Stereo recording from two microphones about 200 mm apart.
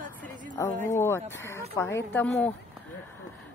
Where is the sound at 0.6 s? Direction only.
15° left (ahead or behind).